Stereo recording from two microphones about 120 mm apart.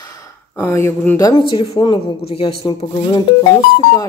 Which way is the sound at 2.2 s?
50° left (ahead or behind).